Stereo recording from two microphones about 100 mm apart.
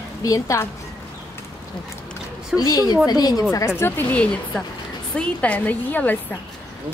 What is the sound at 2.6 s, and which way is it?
Speech, 40° left (ahead or behind).